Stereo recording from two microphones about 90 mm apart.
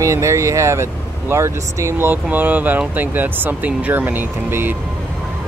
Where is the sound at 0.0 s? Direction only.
35° right (ahead or behind).